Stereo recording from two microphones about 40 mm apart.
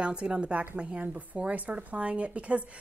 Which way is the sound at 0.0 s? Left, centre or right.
Right.